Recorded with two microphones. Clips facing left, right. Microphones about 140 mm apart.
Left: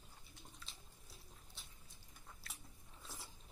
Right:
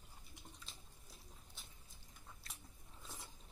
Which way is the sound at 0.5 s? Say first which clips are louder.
Even; centre (ahead or behind).